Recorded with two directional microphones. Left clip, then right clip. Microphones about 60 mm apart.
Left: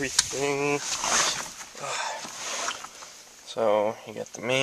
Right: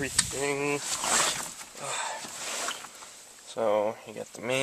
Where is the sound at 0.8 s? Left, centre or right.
Centre.